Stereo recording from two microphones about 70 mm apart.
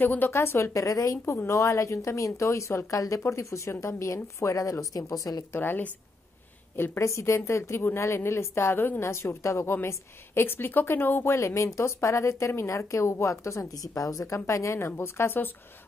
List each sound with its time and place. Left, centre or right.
0.0 s a woman's voice: left
2.9 s a woman's voice: left
5.5 s a woman's voice: left
11.3 s a woman's voice: left